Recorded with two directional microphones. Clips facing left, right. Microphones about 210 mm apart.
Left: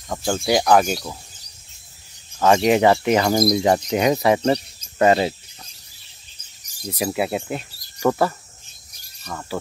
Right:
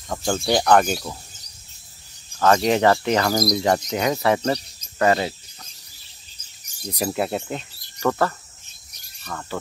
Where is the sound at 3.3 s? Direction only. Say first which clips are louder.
Left 3 dB; 25° left (ahead or behind).